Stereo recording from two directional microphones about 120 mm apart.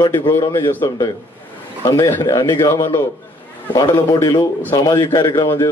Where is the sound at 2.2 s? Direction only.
35° left (ahead or behind).